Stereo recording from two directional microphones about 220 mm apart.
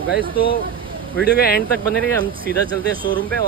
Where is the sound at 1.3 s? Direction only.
45° left (ahead or behind).